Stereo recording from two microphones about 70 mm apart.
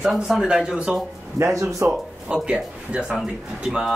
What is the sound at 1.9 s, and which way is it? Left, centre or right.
Speech, centre.